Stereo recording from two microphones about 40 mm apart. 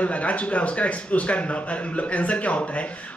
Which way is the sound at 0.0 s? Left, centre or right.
Left.